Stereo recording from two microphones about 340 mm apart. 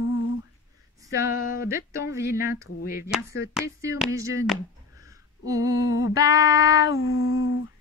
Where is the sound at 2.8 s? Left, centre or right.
Left.